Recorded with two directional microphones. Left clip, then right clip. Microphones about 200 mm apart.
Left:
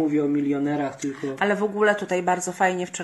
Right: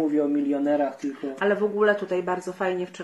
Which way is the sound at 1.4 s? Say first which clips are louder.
Even; 55° left (ahead or behind).